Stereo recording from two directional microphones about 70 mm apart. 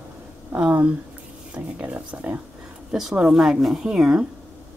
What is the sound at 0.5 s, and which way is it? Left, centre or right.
Speech, centre.